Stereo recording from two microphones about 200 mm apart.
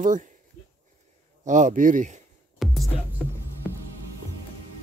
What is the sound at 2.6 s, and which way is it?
Music, centre (ahead or behind).